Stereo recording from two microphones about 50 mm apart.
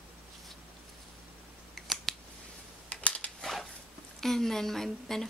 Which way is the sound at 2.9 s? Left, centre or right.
Left.